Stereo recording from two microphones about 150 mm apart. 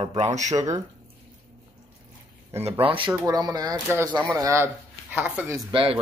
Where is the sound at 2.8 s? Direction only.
35° right (ahead or behind).